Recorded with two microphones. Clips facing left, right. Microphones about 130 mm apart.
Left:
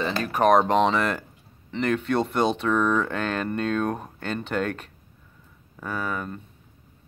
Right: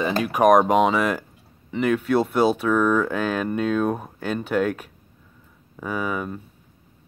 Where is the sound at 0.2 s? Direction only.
10° right (ahead or behind).